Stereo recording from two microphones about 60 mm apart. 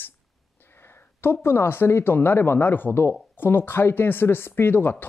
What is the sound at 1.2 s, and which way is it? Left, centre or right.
Speech, left.